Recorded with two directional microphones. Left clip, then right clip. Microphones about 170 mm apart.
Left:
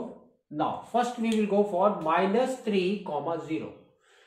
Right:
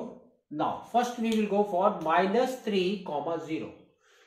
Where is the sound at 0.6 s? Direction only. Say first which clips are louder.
Even; 25° left (ahead or behind).